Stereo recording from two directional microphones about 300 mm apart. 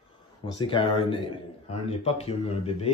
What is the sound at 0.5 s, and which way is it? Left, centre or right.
A man's voice, centre.